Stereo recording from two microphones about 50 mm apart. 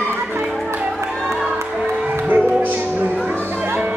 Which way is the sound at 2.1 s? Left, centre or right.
Right.